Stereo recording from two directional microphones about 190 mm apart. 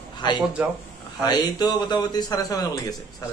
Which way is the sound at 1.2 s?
20° left (ahead or behind).